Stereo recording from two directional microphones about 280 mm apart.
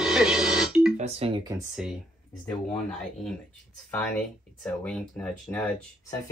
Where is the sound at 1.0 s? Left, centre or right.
Right.